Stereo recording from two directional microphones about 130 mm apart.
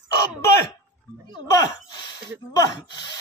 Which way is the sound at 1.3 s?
30° left (ahead or behind).